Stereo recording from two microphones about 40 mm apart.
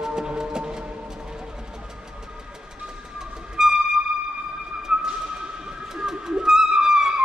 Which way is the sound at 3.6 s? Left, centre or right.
Centre.